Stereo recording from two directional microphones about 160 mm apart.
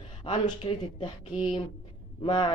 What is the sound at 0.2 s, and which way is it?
Speech, 35° left (ahead or behind).